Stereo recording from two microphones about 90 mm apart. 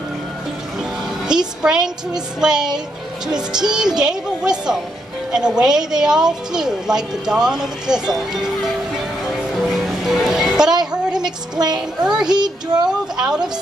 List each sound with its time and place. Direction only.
1.6 s a woman's voice: 5° right (ahead or behind)
11.5 s child singing: 50° right (ahead or behind)
12.0 s speech: 5° right (ahead or behind)
12.3 s child singing: 50° right (ahead or behind)